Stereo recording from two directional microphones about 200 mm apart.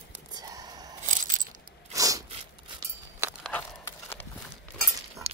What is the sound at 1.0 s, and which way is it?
Coin, 40° right (ahead or behind).